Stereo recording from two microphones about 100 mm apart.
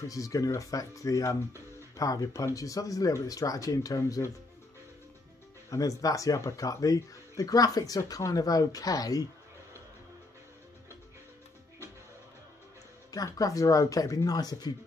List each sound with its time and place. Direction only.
0.1 s speech: 35° left (ahead or behind)
5.7 s speech: 35° left (ahead or behind)
13.1 s speech: 35° left (ahead or behind)